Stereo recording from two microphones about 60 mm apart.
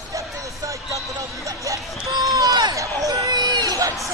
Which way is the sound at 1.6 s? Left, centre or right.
Right.